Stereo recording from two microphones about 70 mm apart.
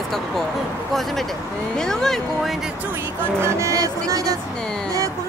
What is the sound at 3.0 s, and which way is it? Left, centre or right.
Speech, right.